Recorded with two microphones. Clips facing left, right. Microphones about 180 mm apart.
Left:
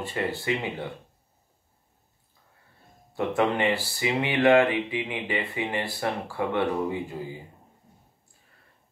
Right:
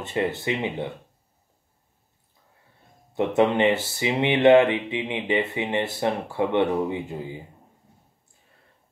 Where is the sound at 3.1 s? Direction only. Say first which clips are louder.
Right 4 dB; 20° right (ahead or behind).